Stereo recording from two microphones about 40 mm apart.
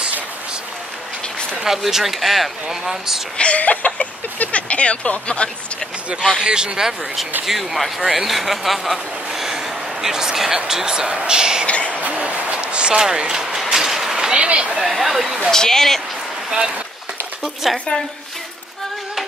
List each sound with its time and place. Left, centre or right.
1.9 s speech: centre
3.3 s speech: left
6.4 s speech: right
7.4 s a man's voice: centre
11.6 s a sound: left
12.1 s a sound: right
13.0 s speech: centre
13.7 s vehicle: centre
14.3 s speech: right
14.8 s a man's voice: centre
15.5 s speech: centre
16.4 s speech: centre
17.6 s a man's voice: centre